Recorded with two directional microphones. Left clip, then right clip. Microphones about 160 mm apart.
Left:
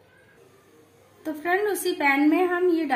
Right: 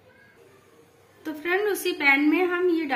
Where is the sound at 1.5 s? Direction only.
70° left (ahead or behind).